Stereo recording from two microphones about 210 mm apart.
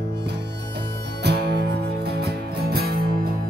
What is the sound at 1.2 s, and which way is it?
Music, 50° right (ahead or behind).